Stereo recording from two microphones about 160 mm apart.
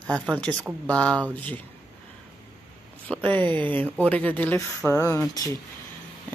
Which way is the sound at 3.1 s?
10° left (ahead or behind).